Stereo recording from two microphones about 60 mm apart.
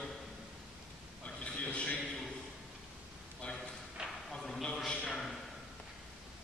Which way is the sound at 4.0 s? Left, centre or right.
Centre.